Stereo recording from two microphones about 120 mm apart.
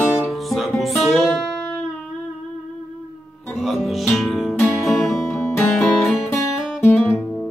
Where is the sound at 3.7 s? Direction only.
Centre (ahead or behind).